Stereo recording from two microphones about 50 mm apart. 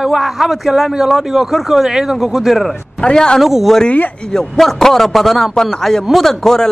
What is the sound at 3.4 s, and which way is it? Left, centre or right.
Speech, centre.